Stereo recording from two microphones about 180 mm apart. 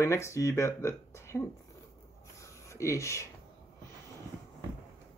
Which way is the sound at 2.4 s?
15° left (ahead or behind).